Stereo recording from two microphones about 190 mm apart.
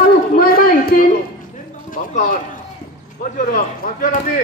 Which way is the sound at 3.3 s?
45° left (ahead or behind).